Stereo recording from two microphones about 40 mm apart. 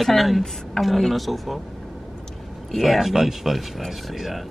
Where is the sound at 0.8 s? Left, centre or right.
Centre.